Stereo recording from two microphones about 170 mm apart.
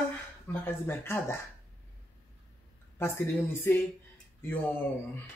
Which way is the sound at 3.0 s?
15° left (ahead or behind).